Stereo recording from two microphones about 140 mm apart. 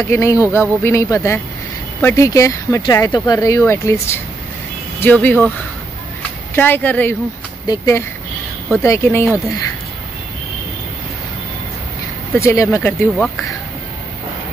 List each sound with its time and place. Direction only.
0.1 s speech: 20° left (ahead or behind)
6.5 s speech: 15° left (ahead or behind)
7.6 s speech: 25° left (ahead or behind)
12.4 s speech: 20° left (ahead or behind)
13.2 s speech: centre (ahead or behind)